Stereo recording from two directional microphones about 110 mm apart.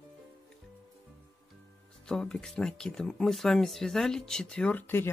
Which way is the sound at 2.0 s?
5° left (ahead or behind).